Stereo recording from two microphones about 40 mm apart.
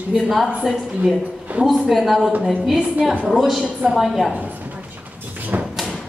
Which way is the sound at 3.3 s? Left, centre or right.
Centre.